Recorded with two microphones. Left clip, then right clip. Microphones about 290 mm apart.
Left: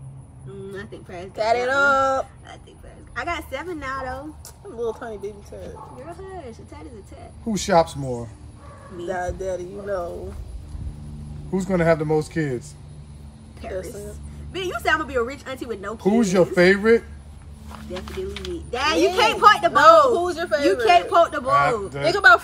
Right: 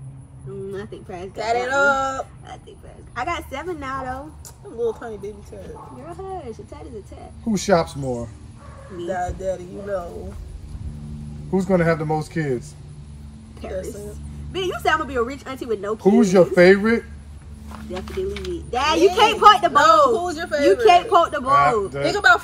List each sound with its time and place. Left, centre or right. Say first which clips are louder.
0.7 s speech: right 2 dB; centre
1.3 s speech: left 1 dB; centre
3.2 s speech: right 1 dB; centre
4.7 s speech: right 3 dB; centre
6.3 s speech: right 4 dB; centre
11.5 s speech: right 1 dB; centre
13.7 s speech: right 2 dB; centre
14.5 s speech: right 1 dB; centre
19.7 s speech: left 1 dB; centre
20.6 s speech: right 3 dB; centre